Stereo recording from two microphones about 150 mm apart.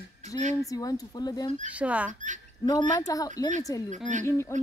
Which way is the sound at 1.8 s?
10° right (ahead or behind).